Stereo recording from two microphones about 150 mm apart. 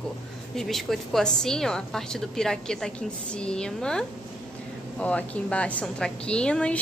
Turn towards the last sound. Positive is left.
turn(degrees=5)  # may be behind; listen again after turning